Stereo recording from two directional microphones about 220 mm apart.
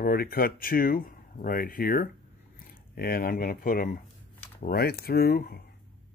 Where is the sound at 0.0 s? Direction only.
45° left (ahead or behind).